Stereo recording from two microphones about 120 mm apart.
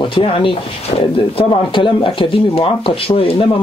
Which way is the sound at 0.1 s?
45° left (ahead or behind).